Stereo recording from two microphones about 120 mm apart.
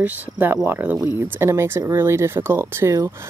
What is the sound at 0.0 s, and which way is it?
Speech, 15° right (ahead or behind).